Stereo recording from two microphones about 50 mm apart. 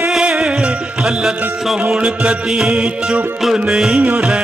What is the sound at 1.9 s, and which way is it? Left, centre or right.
Music, centre.